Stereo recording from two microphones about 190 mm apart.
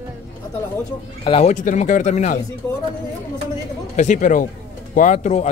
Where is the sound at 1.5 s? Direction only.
40° left (ahead or behind).